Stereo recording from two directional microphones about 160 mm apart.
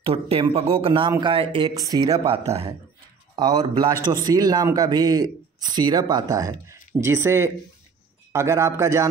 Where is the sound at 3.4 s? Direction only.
25° right (ahead or behind).